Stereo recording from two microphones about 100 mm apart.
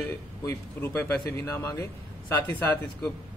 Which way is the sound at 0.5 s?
25° left (ahead or behind).